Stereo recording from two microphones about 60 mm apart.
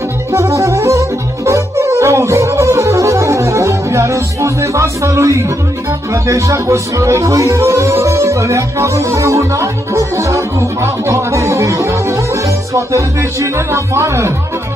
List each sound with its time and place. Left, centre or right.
0.3 s music: right
6.2 s speech: right